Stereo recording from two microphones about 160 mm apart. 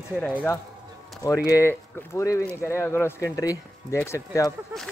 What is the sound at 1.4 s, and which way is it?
Speech, 15° left (ahead or behind).